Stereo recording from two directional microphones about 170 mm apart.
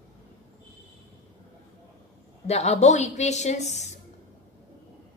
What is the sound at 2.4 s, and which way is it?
A woman's voice, 40° left (ahead or behind).